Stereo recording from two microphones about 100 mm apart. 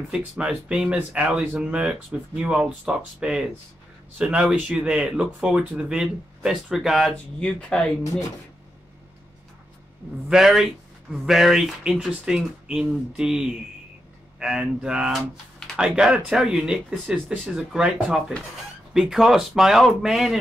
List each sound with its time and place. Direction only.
0.1 s speech: 10° right (ahead or behind)
7.3 s speech: 10° left (ahead or behind)
8.0 s speech: 35° left (ahead or behind)
10.3 s speech: 5° right (ahead or behind)